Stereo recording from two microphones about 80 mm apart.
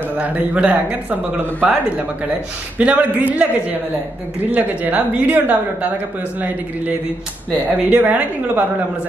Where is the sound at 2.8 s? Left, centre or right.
Centre.